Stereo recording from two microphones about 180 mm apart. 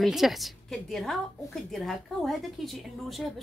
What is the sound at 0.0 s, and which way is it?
A woman's voice, centre (ahead or behind).